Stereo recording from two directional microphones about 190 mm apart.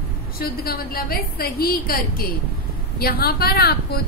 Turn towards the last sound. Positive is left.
turn(degrees=55)  # may be behind; listen again after turning